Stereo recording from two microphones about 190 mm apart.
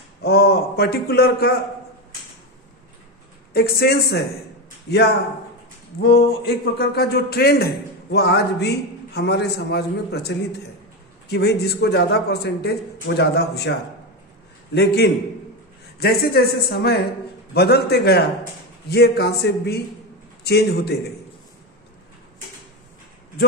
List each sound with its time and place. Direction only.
0.2 s a man's voice: 55° left (ahead or behind)
3.5 s a man's voice: 55° left (ahead or behind)